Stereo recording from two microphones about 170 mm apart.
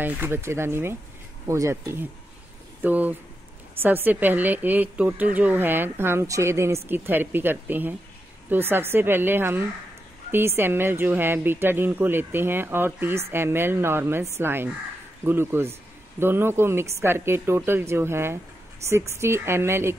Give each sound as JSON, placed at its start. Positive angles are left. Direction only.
{"t": 0.0, "sound": "a woman's voice", "side_deg": -10}